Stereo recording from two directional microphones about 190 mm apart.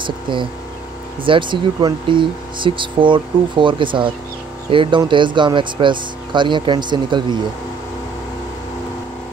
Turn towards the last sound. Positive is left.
turn(degrees=-25)  # may be behind; listen again after turning